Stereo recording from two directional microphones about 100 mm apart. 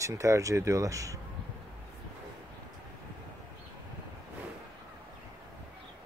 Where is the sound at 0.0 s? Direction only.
30° right (ahead or behind).